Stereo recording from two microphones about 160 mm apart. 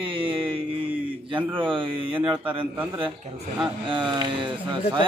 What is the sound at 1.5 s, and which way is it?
A man's voice, 30° right (ahead or behind).